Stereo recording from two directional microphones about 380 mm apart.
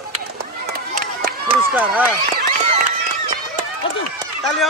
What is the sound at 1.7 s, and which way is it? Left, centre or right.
Speech, centre.